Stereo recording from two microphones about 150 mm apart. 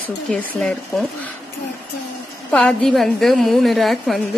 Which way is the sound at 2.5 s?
5° left (ahead or behind).